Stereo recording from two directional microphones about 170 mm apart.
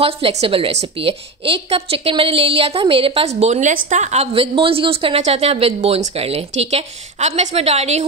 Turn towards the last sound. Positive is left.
turn(degrees=-40)  # may be behind; listen again after turning